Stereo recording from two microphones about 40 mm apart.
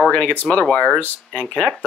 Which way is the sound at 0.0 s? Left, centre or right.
Left.